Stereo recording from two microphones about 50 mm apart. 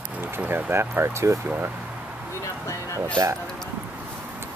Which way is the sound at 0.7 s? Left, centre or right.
Right.